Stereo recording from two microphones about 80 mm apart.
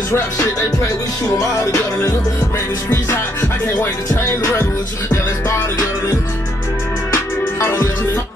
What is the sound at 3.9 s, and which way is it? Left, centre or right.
Music, left.